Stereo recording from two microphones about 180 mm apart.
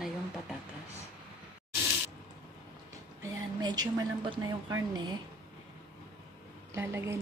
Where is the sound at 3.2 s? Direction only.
20° right (ahead or behind).